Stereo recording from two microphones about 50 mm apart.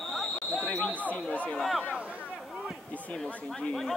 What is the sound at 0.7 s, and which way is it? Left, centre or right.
Speech, left.